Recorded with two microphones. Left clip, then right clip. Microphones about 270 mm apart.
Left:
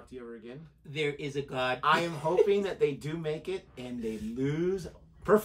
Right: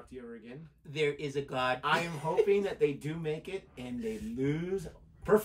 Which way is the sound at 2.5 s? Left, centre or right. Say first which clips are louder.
Left 1 dB; centre.